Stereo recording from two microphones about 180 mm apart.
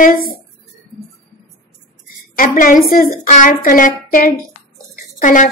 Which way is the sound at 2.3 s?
50° left (ahead or behind).